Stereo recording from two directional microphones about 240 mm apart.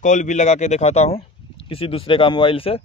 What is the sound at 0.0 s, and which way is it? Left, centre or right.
Speech, left.